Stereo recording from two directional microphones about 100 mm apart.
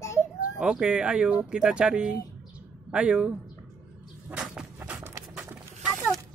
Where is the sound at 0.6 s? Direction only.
10° right (ahead or behind).